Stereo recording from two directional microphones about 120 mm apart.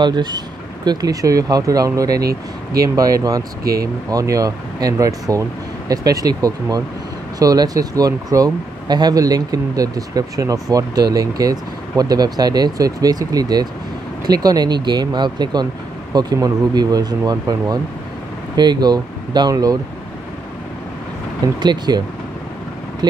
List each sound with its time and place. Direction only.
0.0 s speech: 35° right (ahead or behind)
21.5 s speech: 35° right (ahead or behind)